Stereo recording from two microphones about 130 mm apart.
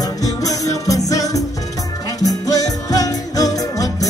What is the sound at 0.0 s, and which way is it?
Music, 30° left (ahead or behind).